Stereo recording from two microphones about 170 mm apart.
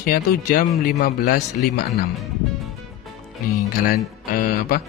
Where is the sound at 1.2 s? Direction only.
70° left (ahead or behind).